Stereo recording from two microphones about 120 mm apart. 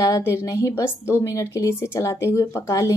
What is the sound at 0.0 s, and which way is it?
A woman's voice, 25° left (ahead or behind).